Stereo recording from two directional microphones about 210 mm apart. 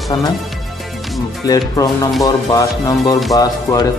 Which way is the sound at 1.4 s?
15° left (ahead or behind).